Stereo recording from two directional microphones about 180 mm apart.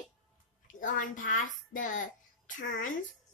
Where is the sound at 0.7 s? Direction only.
45° left (ahead or behind).